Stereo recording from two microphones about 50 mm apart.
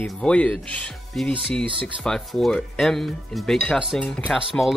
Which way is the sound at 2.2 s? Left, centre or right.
Centre.